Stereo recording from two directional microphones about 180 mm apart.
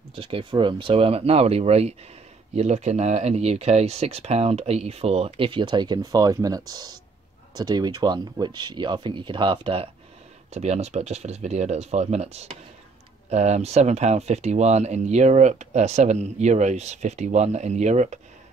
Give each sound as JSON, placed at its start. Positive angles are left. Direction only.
{"t": 0.1, "sound": "speech", "side_deg": -30}